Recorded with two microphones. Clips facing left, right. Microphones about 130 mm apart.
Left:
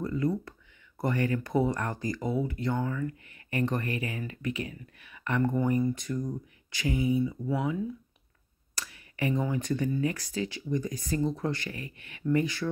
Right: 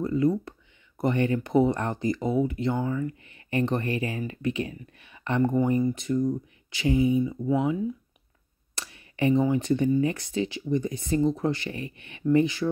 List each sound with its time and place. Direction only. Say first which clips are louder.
0.0 s speech: right 5 dB; 25° right (ahead or behind)